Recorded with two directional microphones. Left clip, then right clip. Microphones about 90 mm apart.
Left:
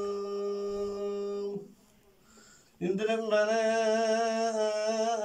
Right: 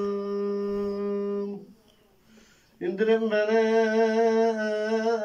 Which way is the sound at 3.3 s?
30° left (ahead or behind).